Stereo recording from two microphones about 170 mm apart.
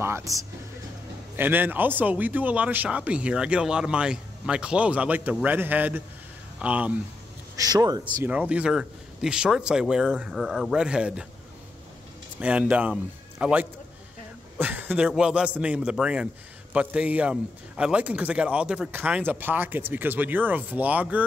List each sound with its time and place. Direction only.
0.0 s a man's voice: 15° right (ahead or behind)
7.5 s speech: 20° right (ahead or behind)
8.3 s speech: 5° right (ahead or behind)
12.4 s a man's voice: 5° right (ahead or behind)